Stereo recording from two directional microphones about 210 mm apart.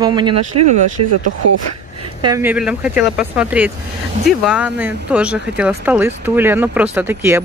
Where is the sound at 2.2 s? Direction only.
10° right (ahead or behind).